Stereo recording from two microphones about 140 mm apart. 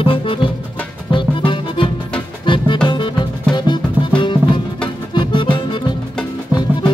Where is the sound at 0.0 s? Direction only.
40° left (ahead or behind).